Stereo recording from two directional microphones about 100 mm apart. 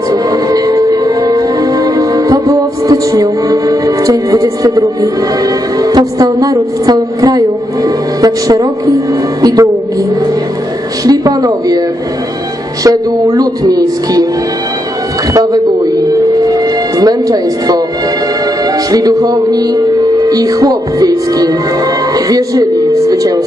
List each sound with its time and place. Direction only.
0.1 s music: 40° right (ahead or behind)
5.8 s a woman's voice: 40° right (ahead or behind)
11.1 s a woman's voice: 40° right (ahead or behind)
12.8 s a woman's voice: 35° right (ahead or behind)
16.4 s music: 40° right (ahead or behind)
18.9 s a woman's voice: 40° right (ahead or behind)